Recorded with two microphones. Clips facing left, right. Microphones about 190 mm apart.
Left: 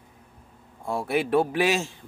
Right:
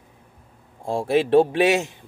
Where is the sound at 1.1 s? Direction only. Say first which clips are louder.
Right 6 dB; 25° right (ahead or behind).